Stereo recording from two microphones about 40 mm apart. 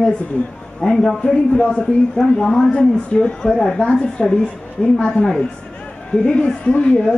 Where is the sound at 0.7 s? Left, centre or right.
Centre.